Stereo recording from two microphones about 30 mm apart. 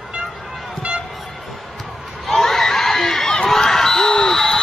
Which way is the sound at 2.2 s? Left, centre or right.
Centre.